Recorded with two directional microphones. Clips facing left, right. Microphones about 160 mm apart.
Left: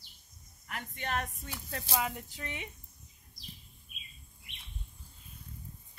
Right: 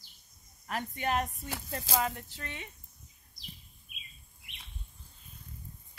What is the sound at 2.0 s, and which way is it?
Speech, 15° left (ahead or behind).